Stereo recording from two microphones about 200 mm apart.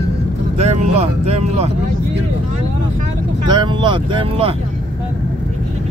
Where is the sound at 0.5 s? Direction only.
30° right (ahead or behind).